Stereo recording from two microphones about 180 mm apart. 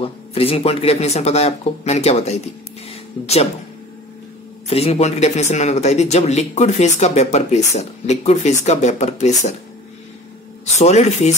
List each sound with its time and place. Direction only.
0.0 s speech: 30° left (ahead or behind)
4.6 s speech: 35° left (ahead or behind)
10.8 s speech: 35° left (ahead or behind)